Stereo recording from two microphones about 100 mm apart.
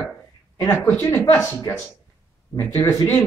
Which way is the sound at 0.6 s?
20° left (ahead or behind).